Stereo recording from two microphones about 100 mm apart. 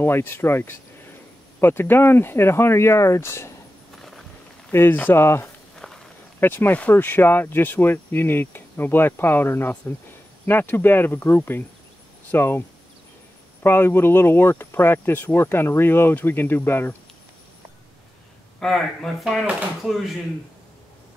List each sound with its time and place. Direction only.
0.0 s speech: 25° left (ahead or behind)
4.7 s speech: 20° left (ahead or behind)
5.8 s walk: 5° left (ahead or behind)
6.4 s speech: 20° left (ahead or behind)
18.6 s speech: 5° left (ahead or behind)